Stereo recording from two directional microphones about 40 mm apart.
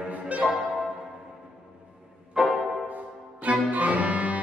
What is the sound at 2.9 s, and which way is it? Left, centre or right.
Music, right.